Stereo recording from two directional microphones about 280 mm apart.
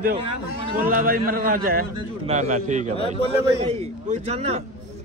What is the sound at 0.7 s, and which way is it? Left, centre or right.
A man's voice, right.